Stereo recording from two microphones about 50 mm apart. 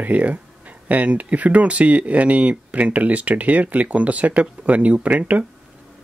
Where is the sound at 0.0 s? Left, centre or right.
Right.